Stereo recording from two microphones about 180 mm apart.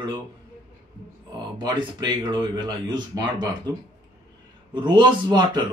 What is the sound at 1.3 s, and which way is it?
Speech, 25° right (ahead or behind).